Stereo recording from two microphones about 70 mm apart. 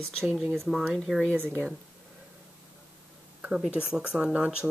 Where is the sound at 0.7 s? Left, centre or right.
Centre.